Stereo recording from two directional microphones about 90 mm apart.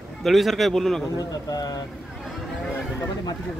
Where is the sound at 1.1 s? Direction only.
45° left (ahead or behind).